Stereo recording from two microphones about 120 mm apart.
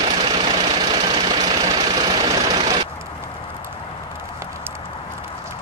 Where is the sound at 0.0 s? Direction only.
45° right (ahead or behind).